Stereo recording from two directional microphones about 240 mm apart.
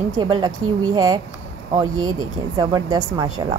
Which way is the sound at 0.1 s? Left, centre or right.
Centre.